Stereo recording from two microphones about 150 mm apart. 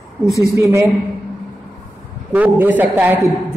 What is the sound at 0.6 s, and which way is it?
Speech, 20° right (ahead or behind).